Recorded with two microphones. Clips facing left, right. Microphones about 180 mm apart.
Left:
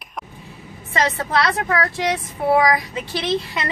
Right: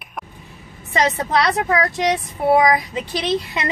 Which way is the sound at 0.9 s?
20° right (ahead or behind).